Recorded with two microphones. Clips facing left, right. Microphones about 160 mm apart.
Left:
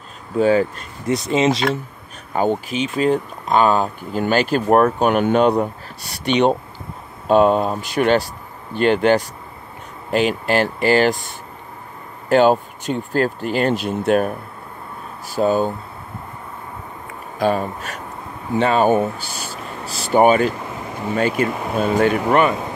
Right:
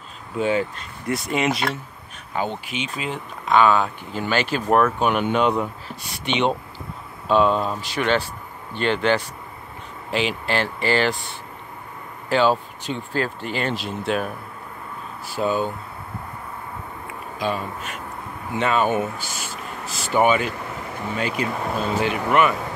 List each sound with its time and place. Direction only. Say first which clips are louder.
0.4 s speech: left 6 dB; 40° left (ahead or behind)
1.0 s speech: left 5 dB; 20° left (ahead or behind)
2.3 s speech: left 7 dB; 45° left (ahead or behind)
17.4 s speech: left 7 dB; 45° left (ahead or behind)
22.3 s speech: even; 35° left (ahead or behind)